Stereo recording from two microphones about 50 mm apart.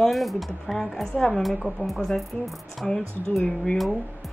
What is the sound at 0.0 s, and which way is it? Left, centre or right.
A woman's voice, centre.